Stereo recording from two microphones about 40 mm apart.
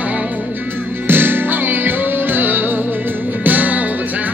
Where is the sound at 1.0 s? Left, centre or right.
Right.